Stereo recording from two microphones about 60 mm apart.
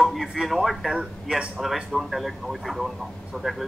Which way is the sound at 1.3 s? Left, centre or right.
Centre.